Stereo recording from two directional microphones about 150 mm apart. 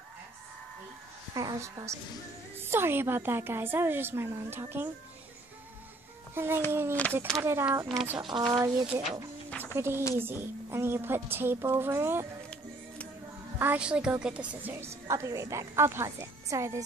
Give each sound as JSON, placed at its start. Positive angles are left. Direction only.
{"t": 1.3, "sound": "a woman's voice", "side_deg": -25}
{"t": 6.3, "sound": "a child's voice", "side_deg": -15}
{"t": 8.2, "sound": "a woman's voice", "side_deg": -30}
{"t": 9.5, "sound": "a sound", "side_deg": 10}
{"t": 9.8, "sound": "a woman's voice", "side_deg": -15}
{"t": 12.4, "sound": "music", "side_deg": 10}
{"t": 13.6, "sound": "a woman's voice", "side_deg": -10}